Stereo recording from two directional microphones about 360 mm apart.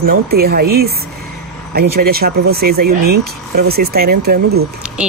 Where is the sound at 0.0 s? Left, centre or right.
Right.